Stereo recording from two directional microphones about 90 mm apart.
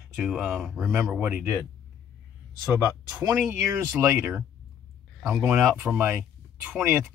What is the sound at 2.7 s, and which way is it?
Speech, 20° right (ahead or behind).